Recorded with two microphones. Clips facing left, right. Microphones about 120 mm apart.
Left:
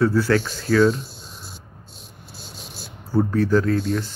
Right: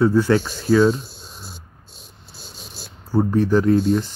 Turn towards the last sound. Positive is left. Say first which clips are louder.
# right 5 dB
turn(degrees=-15)  # may be behind; listen again after turning